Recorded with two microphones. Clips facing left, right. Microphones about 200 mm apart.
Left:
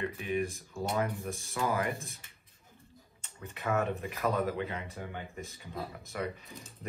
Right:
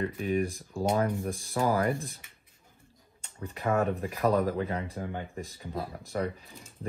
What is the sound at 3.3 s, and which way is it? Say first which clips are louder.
Speech: right 4 dB; 30° right (ahead or behind).